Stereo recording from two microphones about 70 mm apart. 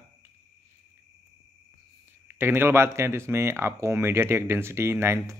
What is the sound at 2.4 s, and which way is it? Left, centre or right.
A man's voice, right.